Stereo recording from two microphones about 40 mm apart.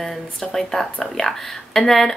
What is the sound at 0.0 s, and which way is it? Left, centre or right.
Speech, centre.